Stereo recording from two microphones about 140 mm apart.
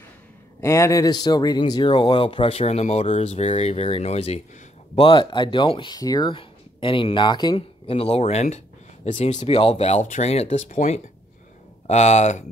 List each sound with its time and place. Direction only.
0.6 s speech: 20° left (ahead or behind); by 12.4 s 55° left (ahead or behind)